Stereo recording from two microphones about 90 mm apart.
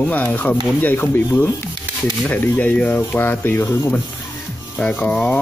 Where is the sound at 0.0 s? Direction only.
20° left (ahead or behind).